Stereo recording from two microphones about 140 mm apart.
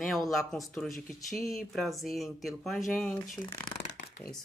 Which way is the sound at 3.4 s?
35° left (ahead or behind).